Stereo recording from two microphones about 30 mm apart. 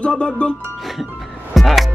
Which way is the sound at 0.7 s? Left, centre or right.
Centre.